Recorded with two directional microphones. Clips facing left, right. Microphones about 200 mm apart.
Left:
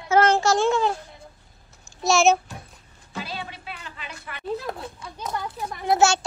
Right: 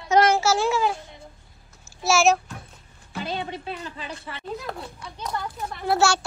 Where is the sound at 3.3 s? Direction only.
30° right (ahead or behind).